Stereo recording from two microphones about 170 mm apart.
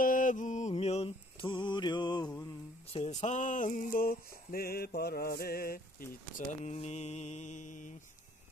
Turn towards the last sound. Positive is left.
turn(degrees=45)  # may be behind; listen again after turning